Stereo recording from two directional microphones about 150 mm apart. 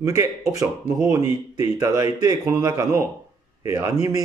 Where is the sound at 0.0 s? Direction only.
20° right (ahead or behind).